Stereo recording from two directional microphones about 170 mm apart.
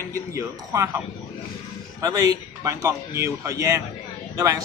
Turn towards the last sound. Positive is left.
turn(degrees=-20)  # may be behind; listen again after turning